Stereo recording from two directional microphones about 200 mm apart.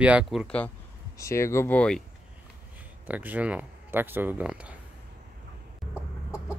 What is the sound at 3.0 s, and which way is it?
Speech, 10° right (ahead or behind).